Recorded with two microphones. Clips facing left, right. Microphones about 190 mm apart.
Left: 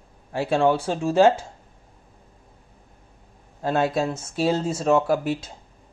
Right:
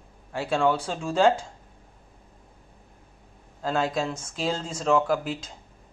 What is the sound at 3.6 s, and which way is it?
Speech, 20° left (ahead or behind).